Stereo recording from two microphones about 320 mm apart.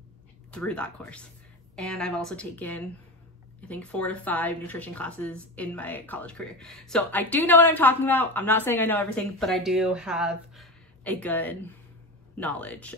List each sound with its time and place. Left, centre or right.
0.5 s speech: centre